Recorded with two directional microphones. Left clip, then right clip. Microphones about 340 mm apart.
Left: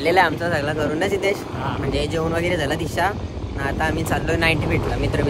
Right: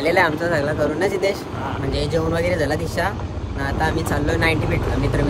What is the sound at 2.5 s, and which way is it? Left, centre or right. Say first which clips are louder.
Speech: right 1 dB; centre.